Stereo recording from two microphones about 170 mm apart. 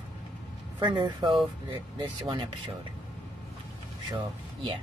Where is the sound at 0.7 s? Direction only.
25° right (ahead or behind).